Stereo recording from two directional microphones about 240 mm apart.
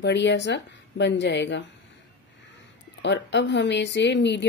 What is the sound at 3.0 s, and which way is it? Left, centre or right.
Speech, left.